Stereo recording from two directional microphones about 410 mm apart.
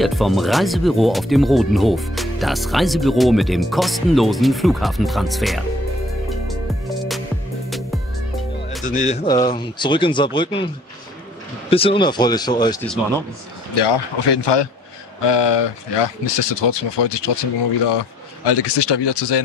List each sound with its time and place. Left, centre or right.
0.0 s speech: centre
8.8 s speech: centre
11.7 s speech: centre
13.7 s a man's voice: left
15.2 s speech: left
17.8 s a man's voice: left